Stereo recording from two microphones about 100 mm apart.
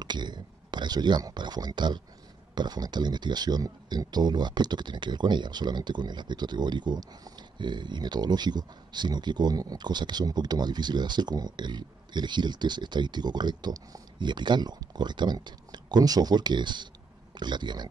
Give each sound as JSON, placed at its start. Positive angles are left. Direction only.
{"t": 0.0, "sound": "speech", "side_deg": -45}